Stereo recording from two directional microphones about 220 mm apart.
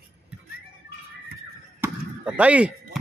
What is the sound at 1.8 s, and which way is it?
Chop, 5° right (ahead or behind).